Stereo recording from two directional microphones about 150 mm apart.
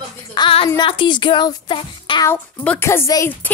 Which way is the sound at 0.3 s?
35° left (ahead or behind).